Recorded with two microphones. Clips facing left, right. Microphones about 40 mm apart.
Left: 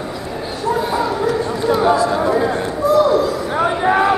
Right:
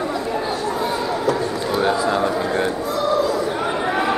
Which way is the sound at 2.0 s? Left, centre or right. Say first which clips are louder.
Left 3 dB; centre.